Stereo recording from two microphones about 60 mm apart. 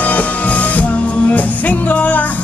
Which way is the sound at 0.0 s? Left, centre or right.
Left.